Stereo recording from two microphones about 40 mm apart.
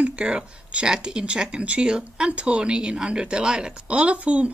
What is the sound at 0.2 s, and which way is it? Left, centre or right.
Speech, right.